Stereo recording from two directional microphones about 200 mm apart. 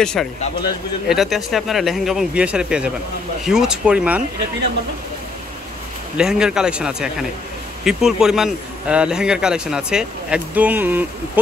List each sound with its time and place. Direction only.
0.0 s speech: 5° left (ahead or behind)
6.1 s speech: 5° right (ahead or behind)